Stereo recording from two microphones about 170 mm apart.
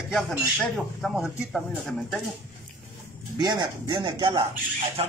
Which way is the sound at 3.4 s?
25° right (ahead or behind).